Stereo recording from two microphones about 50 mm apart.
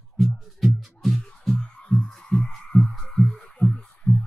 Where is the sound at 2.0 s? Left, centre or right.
Centre.